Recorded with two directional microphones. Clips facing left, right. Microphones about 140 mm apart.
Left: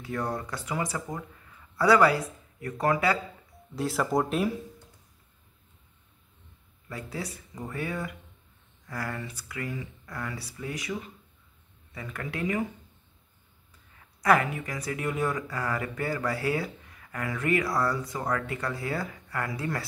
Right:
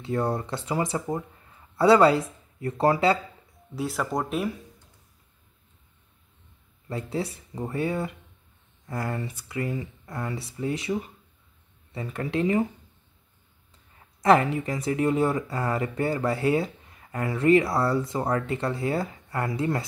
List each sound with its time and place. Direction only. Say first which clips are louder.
0.0 s speech: right 5 dB; 25° right (ahead or behind)
3.7 s speech: left 2 dB; centre (ahead or behind)
6.9 s speech: right 6 dB; 25° right (ahead or behind)
13.9 s speech: right 4 dB; 25° right (ahead or behind)